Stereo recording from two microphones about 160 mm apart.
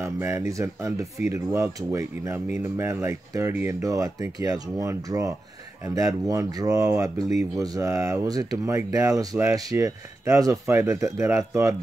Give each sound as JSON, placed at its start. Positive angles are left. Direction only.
{"t": 0.0, "sound": "speech", "side_deg": -15}